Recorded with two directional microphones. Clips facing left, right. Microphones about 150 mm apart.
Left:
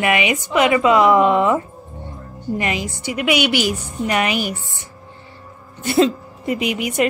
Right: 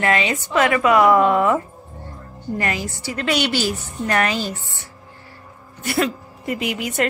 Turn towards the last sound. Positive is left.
turn(degrees=20)  # may be behind; listen again after turning